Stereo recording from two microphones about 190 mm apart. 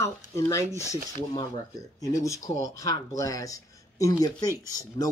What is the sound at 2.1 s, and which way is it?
Speech, 20° left (ahead or behind).